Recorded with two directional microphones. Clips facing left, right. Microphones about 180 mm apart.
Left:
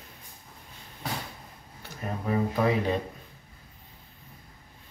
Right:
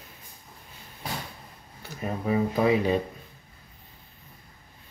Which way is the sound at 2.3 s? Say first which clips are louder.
Right 3 dB; 5° right (ahead or behind).